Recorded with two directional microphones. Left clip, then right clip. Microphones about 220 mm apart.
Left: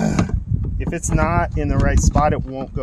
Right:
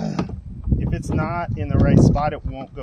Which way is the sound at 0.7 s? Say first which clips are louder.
Left 4 dB; centre (ahead or behind).